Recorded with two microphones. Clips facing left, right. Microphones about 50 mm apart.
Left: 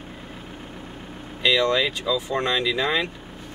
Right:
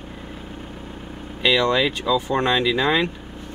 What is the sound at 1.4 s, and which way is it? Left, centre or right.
Speech, right.